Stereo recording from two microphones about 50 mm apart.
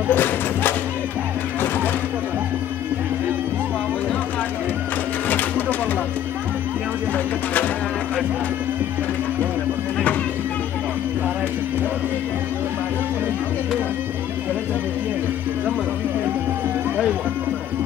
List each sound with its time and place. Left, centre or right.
0.1 s music: left